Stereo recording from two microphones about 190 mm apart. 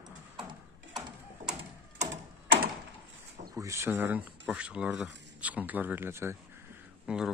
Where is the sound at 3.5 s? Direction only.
15° right (ahead or behind).